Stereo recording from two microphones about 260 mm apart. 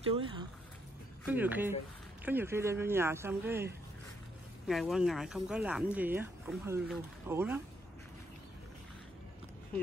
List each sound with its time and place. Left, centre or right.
0.0 s speech: right
1.3 s speech: centre
4.6 s speech: centre